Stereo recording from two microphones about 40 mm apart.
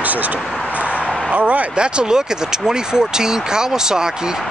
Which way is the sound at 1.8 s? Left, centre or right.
Right.